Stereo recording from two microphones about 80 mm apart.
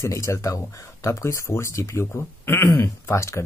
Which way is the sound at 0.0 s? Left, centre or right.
Left.